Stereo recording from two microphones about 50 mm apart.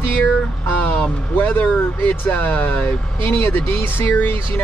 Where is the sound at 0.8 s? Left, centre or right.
Left.